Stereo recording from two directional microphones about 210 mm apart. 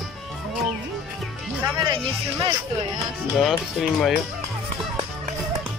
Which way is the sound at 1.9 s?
15° right (ahead or behind).